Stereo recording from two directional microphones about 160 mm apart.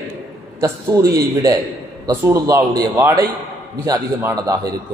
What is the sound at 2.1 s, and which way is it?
A man's voice, 20° right (ahead or behind).